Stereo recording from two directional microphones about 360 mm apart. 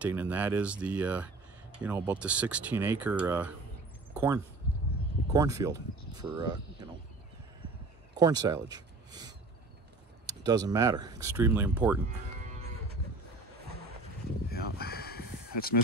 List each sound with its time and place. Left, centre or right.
0.0 s speech: centre
4.1 s a sound: centre
5.3 s speech: centre
8.1 s speech: centre
12.1 s moo: centre
13.6 s vehicle: right
14.5 s a sound: left